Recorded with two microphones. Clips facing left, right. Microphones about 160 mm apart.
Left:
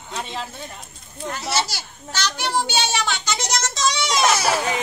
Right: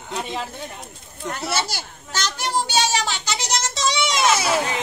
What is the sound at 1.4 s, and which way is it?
Children playing, 55° right (ahead or behind).